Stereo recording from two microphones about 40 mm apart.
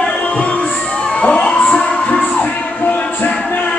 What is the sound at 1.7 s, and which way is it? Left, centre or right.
Music, left.